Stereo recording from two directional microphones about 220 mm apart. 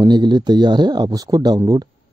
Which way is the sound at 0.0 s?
20° right (ahead or behind).